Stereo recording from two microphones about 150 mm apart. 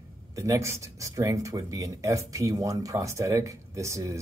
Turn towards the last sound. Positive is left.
turn(degrees=-20)  # may be behind; listen again after turning